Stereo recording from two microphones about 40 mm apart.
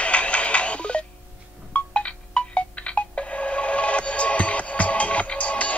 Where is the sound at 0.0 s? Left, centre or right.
Left.